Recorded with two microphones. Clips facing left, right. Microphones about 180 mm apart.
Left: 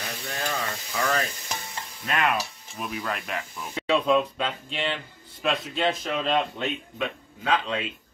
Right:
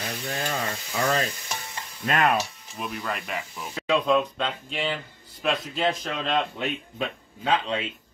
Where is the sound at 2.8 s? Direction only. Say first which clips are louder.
Even; centre (ahead or behind).